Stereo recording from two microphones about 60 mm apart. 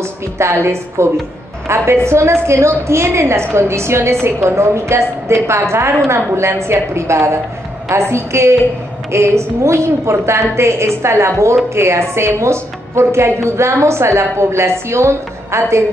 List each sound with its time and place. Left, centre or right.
0.4 s a woman's voice: right